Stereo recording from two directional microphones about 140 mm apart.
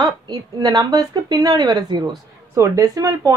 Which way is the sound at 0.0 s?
30° right (ahead or behind).